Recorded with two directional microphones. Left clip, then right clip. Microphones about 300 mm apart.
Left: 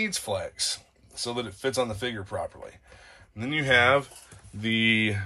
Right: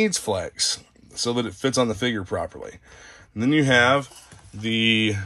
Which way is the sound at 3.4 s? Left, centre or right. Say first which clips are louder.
Right 4 dB; centre.